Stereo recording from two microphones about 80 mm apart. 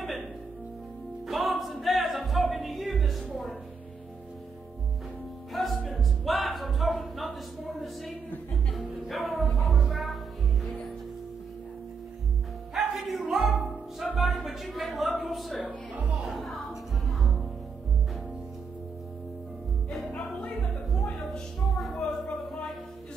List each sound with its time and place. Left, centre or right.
1.2 s music: centre
5.5 s music: centre
12.7 s music: centre
19.9 s music: centre
21.7 s a sound: centre